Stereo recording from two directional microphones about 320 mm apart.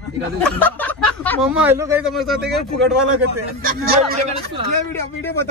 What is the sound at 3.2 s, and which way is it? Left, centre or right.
Speech, right.